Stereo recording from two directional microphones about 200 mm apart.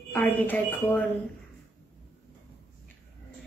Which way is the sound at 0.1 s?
10° left (ahead or behind).